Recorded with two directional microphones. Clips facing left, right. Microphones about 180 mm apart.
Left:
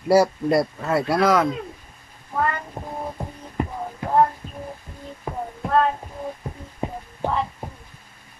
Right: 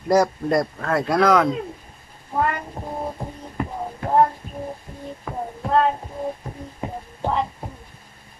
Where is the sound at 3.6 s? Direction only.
20° left (ahead or behind).